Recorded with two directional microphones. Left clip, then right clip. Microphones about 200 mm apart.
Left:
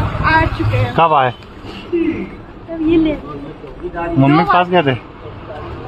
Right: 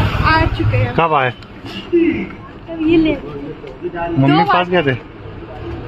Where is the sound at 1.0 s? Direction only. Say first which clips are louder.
Left 3 dB; 15° left (ahead or behind).